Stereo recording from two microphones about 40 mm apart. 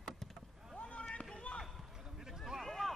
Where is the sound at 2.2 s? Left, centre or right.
Centre.